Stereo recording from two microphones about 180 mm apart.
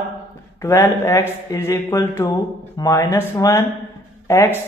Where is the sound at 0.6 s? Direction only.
15° left (ahead or behind).